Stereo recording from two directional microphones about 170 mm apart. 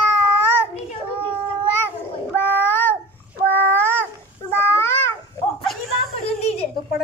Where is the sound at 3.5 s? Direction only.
10° left (ahead or behind).